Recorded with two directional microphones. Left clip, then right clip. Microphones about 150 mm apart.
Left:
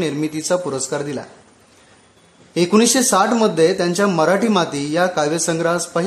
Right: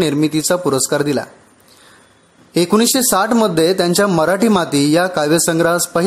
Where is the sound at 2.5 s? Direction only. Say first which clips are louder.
Right 1 dB; 40° right (ahead or behind).